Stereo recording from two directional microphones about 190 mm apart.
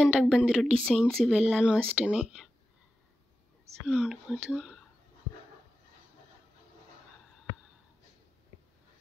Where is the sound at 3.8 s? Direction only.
5° right (ahead or behind).